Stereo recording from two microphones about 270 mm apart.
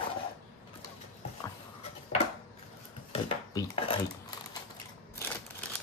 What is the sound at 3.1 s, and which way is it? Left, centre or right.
Dishes, centre.